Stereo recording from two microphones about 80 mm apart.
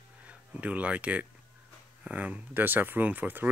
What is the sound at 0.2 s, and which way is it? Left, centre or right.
Speech, centre.